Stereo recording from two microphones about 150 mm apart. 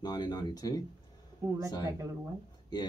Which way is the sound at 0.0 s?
30° left (ahead or behind).